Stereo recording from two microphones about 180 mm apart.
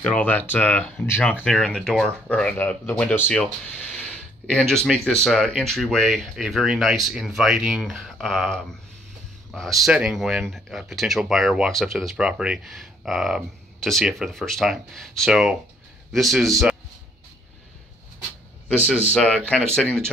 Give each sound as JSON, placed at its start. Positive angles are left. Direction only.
{"t": 0.0, "sound": "speech", "side_deg": 5}
{"t": 18.9, "sound": "speech", "side_deg": 5}